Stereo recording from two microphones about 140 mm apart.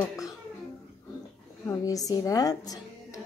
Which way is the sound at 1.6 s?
25° left (ahead or behind).